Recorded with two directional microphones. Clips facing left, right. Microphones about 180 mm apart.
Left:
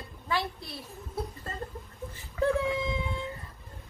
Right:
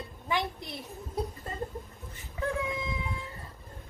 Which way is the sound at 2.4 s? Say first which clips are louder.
Left 7 dB; 20° right (ahead or behind).